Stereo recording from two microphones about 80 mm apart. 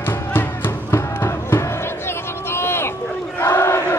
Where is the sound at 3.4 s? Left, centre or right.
Left.